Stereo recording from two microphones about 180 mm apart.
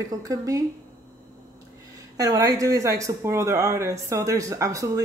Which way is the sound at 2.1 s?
20° right (ahead or behind).